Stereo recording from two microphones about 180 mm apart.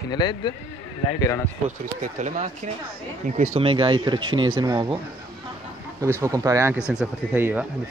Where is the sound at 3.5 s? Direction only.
30° right (ahead or behind).